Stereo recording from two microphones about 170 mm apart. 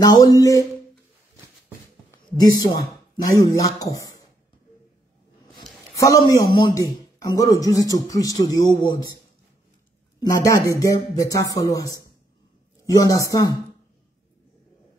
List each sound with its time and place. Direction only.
0.0 s a man's voice: 20° left (ahead or behind)
2.0 s a sound: 20° left (ahead or behind)
3.3 s a man's voice: 20° left (ahead or behind)
5.9 s a man's voice: 20° left (ahead or behind)
10.2 s a man's voice: 20° left (ahead or behind)